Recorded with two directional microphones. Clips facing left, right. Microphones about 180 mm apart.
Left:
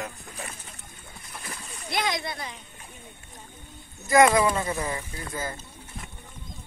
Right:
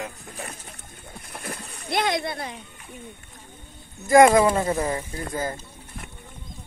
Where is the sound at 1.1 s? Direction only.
60° right (ahead or behind).